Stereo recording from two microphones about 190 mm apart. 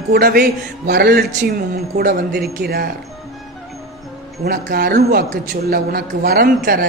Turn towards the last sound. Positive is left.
turn(degrees=-50)  # may be behind; listen again after turning